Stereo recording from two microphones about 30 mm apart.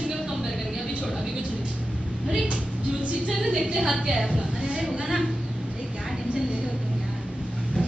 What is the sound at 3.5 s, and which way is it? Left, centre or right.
A woman's voice, right.